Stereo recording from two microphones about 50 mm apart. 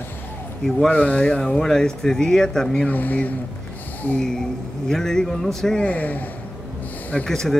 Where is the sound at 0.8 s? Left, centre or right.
Left.